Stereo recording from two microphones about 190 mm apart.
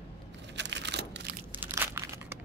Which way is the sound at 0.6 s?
65° right (ahead or behind).